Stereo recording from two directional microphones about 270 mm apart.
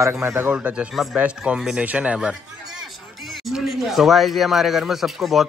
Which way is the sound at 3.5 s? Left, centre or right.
Centre.